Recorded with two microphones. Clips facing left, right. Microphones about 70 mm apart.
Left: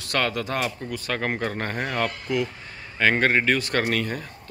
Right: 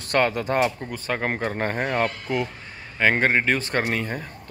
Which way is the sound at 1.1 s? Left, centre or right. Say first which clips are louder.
Right 1 dB; right.